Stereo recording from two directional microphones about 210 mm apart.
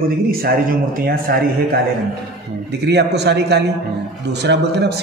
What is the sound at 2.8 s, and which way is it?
Speech, 50° right (ahead or behind).